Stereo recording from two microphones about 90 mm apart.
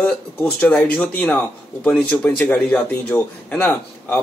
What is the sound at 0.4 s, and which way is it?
Speech, 15° left (ahead or behind).